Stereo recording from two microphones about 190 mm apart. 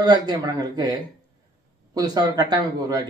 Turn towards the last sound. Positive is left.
turn(degrees=-20)  # may be behind; listen again after turning